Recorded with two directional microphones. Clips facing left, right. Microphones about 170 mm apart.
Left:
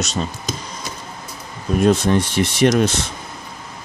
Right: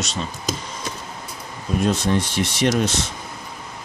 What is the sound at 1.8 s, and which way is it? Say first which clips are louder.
Speech: left 5 dB; 55° left (ahead or behind).